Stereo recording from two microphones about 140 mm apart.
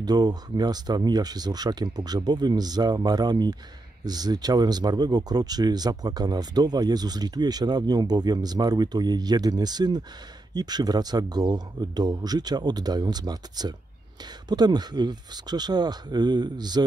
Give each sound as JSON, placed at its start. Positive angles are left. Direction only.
{"t": 0.0, "sound": "speech", "side_deg": -30}